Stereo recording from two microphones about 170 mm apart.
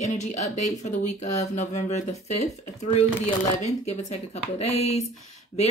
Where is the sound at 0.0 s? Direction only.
40° left (ahead or behind).